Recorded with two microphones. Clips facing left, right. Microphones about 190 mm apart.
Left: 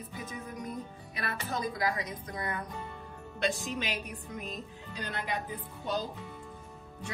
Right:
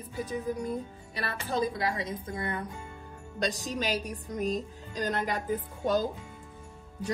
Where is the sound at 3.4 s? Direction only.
40° right (ahead or behind).